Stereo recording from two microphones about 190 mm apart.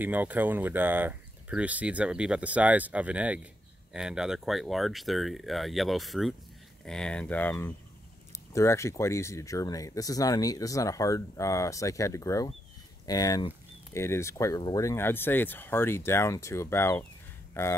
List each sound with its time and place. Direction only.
0.0 s speech: 10° right (ahead or behind); by 17.7 s 15° left (ahead or behind)